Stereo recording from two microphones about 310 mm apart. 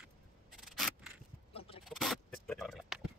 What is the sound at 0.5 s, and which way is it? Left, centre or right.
Scissors, centre.